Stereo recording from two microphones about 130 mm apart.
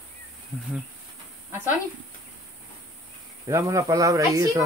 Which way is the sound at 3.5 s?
25° right (ahead or behind).